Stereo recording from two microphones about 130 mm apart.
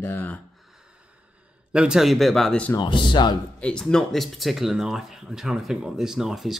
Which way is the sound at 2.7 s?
40° left (ahead or behind).